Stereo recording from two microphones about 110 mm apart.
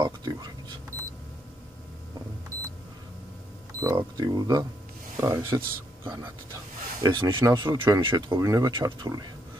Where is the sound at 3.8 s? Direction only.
35° right (ahead or behind).